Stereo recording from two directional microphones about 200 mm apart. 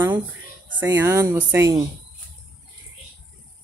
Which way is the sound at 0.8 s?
10° right (ahead or behind).